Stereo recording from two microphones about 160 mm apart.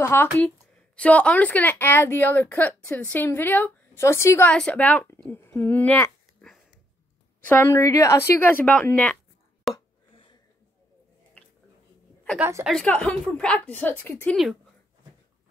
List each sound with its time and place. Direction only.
0.0 s speech: 15° left (ahead or behind)
7.4 s speech: 15° left (ahead or behind)
9.7 s a sound: centre (ahead or behind)
12.4 s a woman's voice: 15° right (ahead or behind)
12.6 s speech: 5° left (ahead or behind)
14.3 s speech: centre (ahead or behind)